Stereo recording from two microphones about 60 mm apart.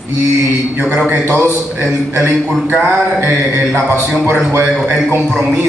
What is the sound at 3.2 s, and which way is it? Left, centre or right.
A man's voice, right.